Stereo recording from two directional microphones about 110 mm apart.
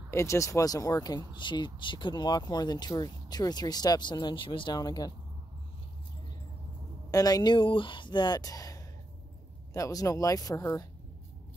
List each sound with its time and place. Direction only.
0.1 s speech: 25° left (ahead or behind)
7.1 s a woman's voice: 35° left (ahead or behind)